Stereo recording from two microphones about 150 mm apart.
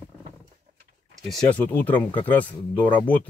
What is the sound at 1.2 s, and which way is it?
Speech, 5° left (ahead or behind).